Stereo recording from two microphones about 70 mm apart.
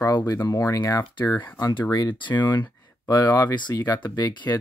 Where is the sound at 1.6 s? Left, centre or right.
Left.